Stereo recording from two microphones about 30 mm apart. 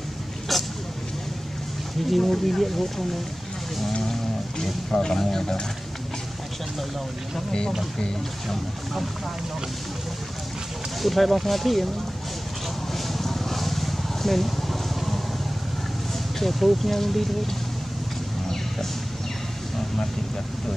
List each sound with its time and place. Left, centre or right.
0.5 s a sound: centre
2.0 s speech: centre
4.1 s vehicle: centre
4.9 s speech: left
11.0 s speech: centre
12.9 s vehicle: centre
16.3 s speech: centre